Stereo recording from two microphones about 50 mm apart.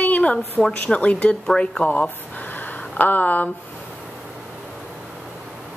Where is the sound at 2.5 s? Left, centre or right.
Left.